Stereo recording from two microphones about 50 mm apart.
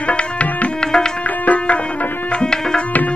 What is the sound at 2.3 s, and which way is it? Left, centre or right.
Tabla, centre.